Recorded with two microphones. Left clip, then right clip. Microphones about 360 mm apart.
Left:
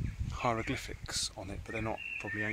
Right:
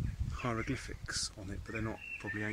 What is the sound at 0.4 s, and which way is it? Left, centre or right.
Speech, centre.